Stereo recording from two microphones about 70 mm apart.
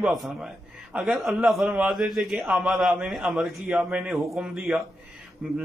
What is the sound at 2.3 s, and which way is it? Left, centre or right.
Speech, right.